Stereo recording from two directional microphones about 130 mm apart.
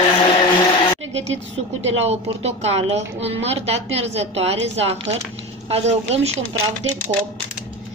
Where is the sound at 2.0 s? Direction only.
55° right (ahead or behind).